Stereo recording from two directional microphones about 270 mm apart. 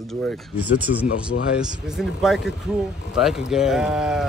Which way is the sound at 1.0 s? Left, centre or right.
Left.